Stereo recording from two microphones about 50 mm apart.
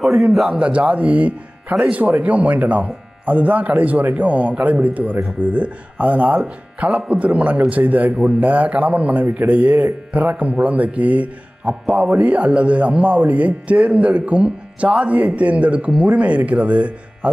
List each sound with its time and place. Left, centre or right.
0.0 s a man's voice: centre
0.6 s speech: right